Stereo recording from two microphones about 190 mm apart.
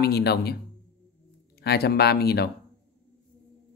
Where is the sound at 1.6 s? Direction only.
60° left (ahead or behind).